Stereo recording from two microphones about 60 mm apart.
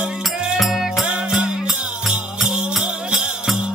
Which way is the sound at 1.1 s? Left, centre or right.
Centre.